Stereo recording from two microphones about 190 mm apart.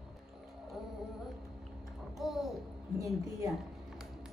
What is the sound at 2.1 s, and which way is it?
Child singing, centre (ahead or behind).